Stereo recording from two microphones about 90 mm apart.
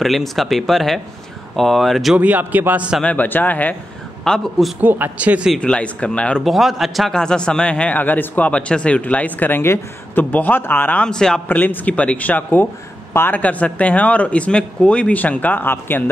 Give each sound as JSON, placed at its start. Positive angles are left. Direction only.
{"t": 0.0, "sound": "speech", "side_deg": 0}
{"t": 2.1, "sound": "a man's voice", "side_deg": -20}
{"t": 3.0, "sound": "speech", "side_deg": 15}
{"t": 4.2, "sound": "speech", "side_deg": 5}
{"t": 4.7, "sound": "a man's voice", "side_deg": -20}
{"t": 5.6, "sound": "a man's voice", "side_deg": 10}
{"t": 6.4, "sound": "a man's voice", "side_deg": 0}
{"t": 11.4, "sound": "a man's voice", "side_deg": 20}